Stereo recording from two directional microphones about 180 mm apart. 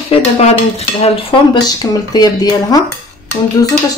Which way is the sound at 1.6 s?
20° left (ahead or behind).